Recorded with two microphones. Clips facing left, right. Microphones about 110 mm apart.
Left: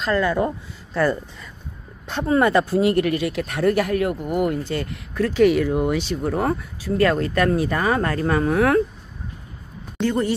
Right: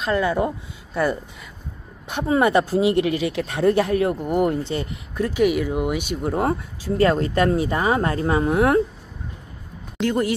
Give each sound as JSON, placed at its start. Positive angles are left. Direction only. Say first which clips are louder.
{"t": 0.0, "sound": "speech", "louder": "even", "side_deg": -15}
{"t": 4.3, "sound": "speech", "louder": "right 2 dB", "side_deg": -40}
{"t": 4.6, "sound": "speech", "louder": "even", "side_deg": -20}
{"t": 9.9, "sound": "speech", "louder": "even", "side_deg": -5}